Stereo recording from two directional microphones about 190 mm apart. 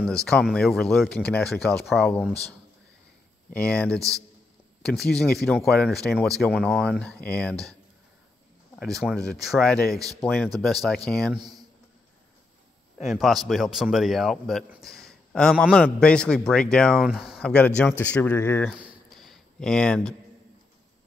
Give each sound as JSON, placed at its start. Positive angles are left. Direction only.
{"t": 0.0, "sound": "speech", "side_deg": 5}
{"t": 3.5, "sound": "speech", "side_deg": 5}
{"t": 8.7, "sound": "speech", "side_deg": 0}
{"t": 11.3, "sound": "speech", "side_deg": -20}
{"t": 13.0, "sound": "speech", "side_deg": 0}
{"t": 18.7, "sound": "a sound", "side_deg": -5}